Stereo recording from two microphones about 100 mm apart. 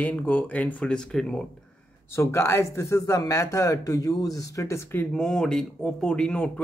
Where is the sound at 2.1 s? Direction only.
25° left (ahead or behind).